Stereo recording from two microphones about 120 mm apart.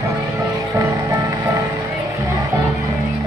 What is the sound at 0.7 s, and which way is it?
Music, 25° right (ahead or behind).